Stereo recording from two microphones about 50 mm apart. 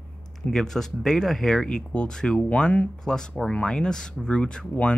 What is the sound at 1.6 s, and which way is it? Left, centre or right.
Speech, centre.